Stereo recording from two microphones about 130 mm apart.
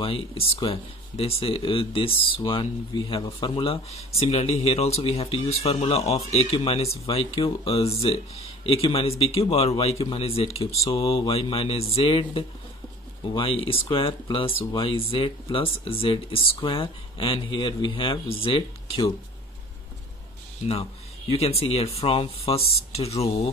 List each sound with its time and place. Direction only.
0.0 s speech: 45° left (ahead or behind)
21.3 s speech: 50° left (ahead or behind)